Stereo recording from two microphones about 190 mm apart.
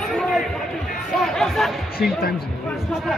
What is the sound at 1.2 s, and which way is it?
Music, centre (ahead or behind).